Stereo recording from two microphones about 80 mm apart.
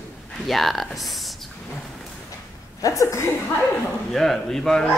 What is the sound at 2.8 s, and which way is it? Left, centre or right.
Speech, left.